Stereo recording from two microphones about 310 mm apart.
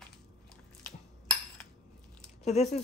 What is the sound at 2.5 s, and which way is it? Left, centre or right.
Speech, left.